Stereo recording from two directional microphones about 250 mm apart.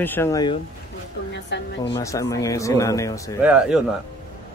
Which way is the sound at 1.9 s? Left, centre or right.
Centre.